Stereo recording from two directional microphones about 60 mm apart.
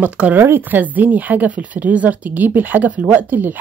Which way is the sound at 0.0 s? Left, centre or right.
Right.